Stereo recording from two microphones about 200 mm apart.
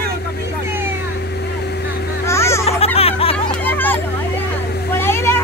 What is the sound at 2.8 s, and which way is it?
Music, 30° left (ahead or behind).